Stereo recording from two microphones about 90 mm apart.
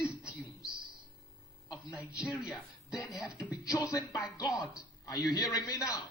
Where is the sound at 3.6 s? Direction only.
40° left (ahead or behind).